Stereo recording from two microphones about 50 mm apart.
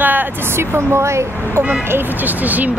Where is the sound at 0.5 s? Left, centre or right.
Right.